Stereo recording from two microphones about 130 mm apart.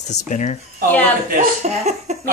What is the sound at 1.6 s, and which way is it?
Speech, 60° right (ahead or behind).